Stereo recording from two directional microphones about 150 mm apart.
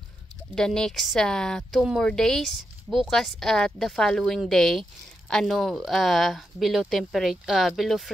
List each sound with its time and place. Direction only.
0.6 s speech: 5° left (ahead or behind)